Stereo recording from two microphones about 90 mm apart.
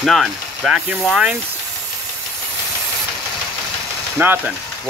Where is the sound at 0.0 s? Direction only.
Centre (ahead or behind).